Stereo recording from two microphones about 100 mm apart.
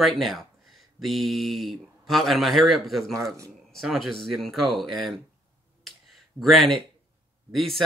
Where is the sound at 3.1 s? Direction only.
30° right (ahead or behind).